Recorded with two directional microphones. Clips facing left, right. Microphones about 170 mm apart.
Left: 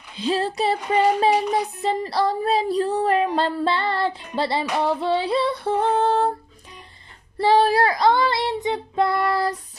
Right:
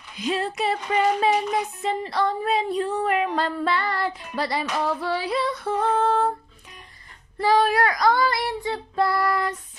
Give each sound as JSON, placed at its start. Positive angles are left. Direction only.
{"t": 0.1, "sound": "speech", "side_deg": 30}
{"t": 7.3, "sound": "child singing", "side_deg": 30}